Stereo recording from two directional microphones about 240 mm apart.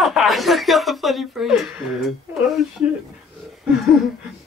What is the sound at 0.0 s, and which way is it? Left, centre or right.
Chuckle, centre.